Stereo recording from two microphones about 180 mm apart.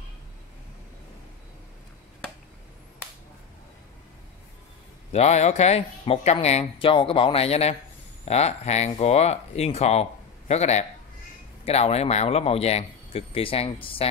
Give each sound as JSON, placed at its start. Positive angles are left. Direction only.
{"t": 5.1, "sound": "speech", "side_deg": 40}